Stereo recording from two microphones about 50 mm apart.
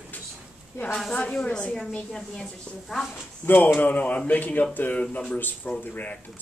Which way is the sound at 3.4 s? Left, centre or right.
Left.